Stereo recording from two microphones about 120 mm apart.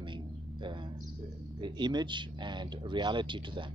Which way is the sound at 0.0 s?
40° right (ahead or behind).